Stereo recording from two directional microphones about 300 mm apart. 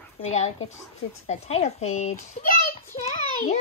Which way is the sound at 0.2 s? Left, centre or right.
Left.